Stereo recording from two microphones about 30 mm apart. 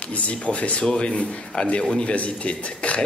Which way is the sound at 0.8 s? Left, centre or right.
Left.